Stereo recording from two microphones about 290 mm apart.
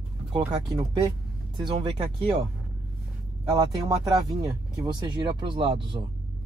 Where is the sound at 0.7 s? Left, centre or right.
Centre.